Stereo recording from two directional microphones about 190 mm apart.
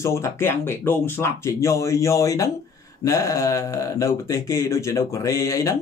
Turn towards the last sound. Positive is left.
turn(degrees=15)  # may be behind; listen again after turning